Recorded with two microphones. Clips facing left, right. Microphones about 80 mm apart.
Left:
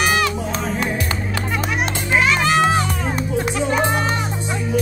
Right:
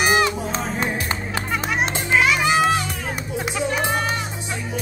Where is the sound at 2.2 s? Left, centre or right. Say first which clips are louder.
Left 2 dB; centre.